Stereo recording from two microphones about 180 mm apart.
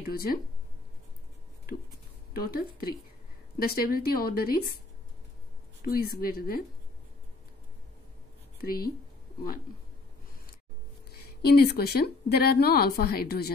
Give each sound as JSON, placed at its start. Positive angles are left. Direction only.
{"t": 0.0, "sound": "a woman's voice", "side_deg": 55}
{"t": 2.3, "sound": "a woman's voice", "side_deg": 55}
{"t": 5.9, "sound": "a woman's voice", "side_deg": 55}
{"t": 8.5, "sound": "a woman's voice", "side_deg": 55}
{"t": 11.1, "sound": "a woman's voice", "side_deg": 60}